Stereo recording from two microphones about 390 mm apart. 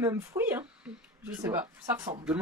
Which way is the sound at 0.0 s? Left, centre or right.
Centre.